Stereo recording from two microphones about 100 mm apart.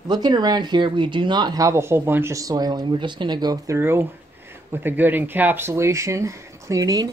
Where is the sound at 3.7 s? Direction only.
25° right (ahead or behind).